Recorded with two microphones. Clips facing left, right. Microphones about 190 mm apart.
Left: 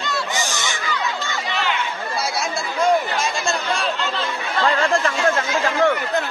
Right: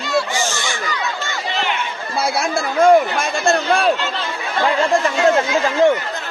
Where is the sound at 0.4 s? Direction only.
15° left (ahead or behind).